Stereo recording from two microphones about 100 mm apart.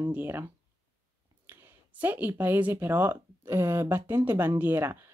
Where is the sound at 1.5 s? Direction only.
20° right (ahead or behind).